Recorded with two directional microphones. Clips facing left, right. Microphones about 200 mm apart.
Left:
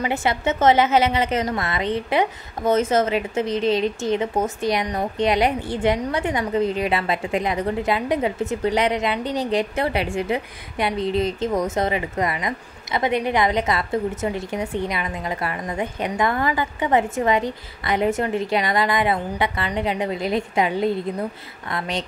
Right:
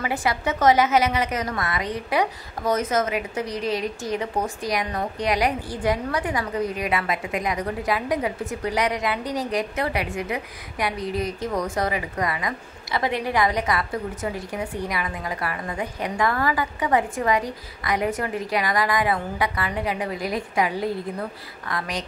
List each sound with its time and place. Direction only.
0.0 s a woman's voice: 25° left (ahead or behind)